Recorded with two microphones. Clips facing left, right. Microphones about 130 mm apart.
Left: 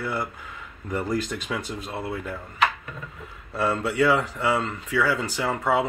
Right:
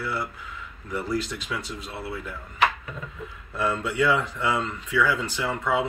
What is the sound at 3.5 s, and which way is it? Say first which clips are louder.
Speech: left 2 dB; 35° left (ahead or behind).